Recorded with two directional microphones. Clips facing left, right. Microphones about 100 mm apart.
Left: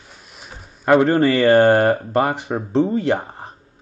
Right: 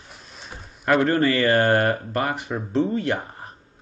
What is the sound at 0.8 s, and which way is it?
Speech, 20° left (ahead or behind).